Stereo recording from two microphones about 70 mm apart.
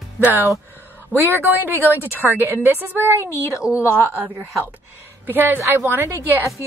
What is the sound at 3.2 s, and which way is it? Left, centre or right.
Speech, left.